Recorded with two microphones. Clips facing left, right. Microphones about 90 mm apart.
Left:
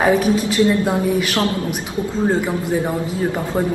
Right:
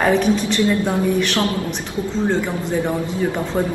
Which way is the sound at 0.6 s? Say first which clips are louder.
Left 2 dB; 25° left (ahead or behind).